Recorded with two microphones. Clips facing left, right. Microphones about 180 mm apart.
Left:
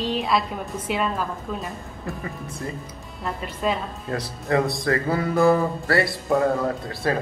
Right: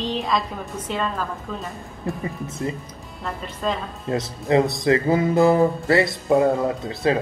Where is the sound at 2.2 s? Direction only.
20° right (ahead or behind).